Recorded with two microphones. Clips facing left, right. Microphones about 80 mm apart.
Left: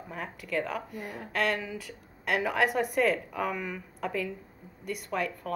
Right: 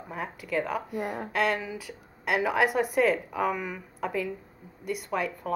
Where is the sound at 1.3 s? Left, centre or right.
Centre.